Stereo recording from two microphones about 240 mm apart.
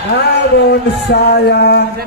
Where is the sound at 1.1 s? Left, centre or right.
Left.